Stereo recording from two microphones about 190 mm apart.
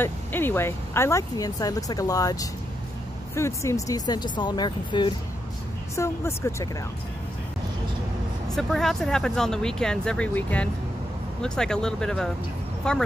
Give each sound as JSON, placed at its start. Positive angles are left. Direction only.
{"t": 0.0, "sound": "speech", "side_deg": 10}
{"t": 8.5, "sound": "speech", "side_deg": 0}